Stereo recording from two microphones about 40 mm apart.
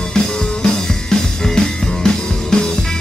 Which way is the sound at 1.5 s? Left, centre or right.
Centre.